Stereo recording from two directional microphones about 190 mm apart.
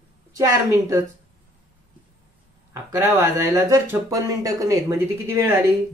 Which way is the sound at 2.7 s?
15° right (ahead or behind).